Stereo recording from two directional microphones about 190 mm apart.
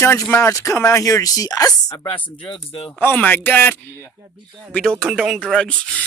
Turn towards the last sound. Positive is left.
turn(degrees=5)  # may be behind; listen again after turning